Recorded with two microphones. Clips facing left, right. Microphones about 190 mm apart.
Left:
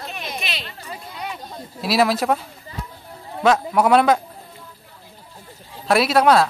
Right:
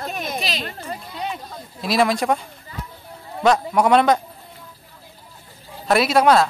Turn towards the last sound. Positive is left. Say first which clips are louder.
# even
turn(degrees=0)  # may be behind; listen again after turning